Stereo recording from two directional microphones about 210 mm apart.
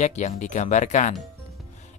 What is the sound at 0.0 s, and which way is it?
Speech, 35° left (ahead or behind).